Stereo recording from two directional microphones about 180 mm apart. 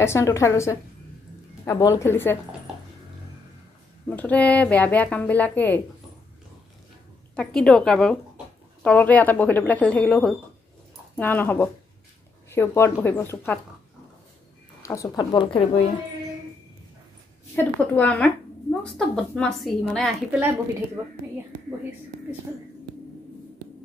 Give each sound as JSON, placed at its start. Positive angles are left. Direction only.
{"t": 0.0, "sound": "speech", "side_deg": 15}
{"t": 4.1, "sound": "speech", "side_deg": 10}
{"t": 7.3, "sound": "a woman's voice", "side_deg": 5}
{"t": 14.8, "sound": "a woman's voice", "side_deg": 15}
{"t": 17.6, "sound": "a woman's voice", "side_deg": 10}
{"t": 21.0, "sound": "a woman's voice", "side_deg": -15}